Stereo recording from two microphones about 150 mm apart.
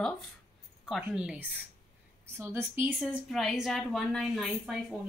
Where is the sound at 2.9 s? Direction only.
Centre (ahead or behind).